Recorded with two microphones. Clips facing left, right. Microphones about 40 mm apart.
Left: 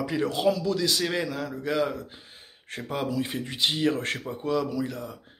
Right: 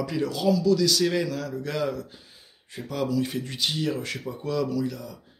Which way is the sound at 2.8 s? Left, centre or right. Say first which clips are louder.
Right 2 dB; left.